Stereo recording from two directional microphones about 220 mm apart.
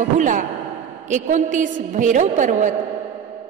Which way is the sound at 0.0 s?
35° right (ahead or behind).